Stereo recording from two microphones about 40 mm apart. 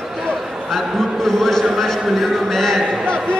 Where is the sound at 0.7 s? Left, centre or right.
Centre.